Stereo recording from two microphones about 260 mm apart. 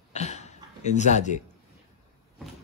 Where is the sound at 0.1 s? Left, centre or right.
Left.